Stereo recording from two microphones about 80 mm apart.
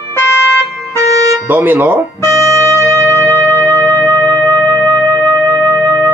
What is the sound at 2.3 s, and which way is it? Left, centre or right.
Music, right.